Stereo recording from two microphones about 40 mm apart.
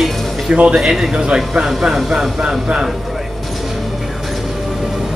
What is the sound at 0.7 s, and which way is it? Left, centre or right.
Speech, centre.